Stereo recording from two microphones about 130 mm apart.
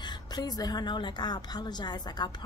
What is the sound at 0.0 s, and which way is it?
A woman's voice, 35° left (ahead or behind).